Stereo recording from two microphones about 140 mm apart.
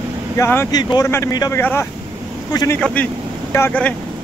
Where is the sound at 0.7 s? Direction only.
30° left (ahead or behind).